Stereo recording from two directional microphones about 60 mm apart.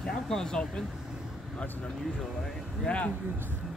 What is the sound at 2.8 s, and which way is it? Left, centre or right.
Speech, left.